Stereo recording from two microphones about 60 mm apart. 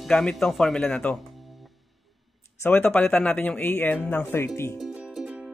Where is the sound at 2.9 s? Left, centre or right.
Left.